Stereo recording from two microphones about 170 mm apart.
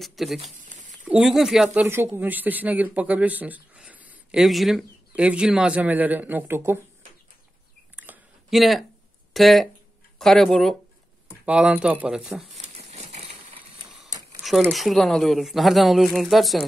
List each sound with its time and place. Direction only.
0.0 s speech: centre (ahead or behind)
0.6 s a sound: 45° right (ahead or behind)
1.0 s speech: 5° right (ahead or behind)
1.9 s speech: 15° right (ahead or behind)
7.9 s a sound: 10° right (ahead or behind)
9.3 s speech: centre (ahead or behind)
12.6 s crumpling: 40° right (ahead or behind)
14.4 s speech: centre (ahead or behind)